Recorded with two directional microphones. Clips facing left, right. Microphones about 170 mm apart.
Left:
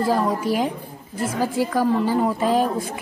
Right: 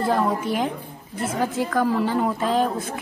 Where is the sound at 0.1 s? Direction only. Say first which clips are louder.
Left 1 dB; 5° left (ahead or behind).